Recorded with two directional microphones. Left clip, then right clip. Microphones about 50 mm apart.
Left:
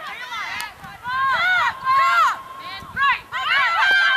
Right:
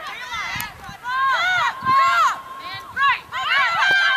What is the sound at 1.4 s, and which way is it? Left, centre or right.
Run, left.